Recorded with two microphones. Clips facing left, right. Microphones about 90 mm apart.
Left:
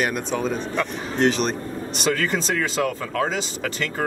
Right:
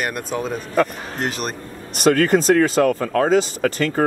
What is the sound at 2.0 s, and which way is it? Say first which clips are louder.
Speech: right 8 dB; 50° right (ahead or behind).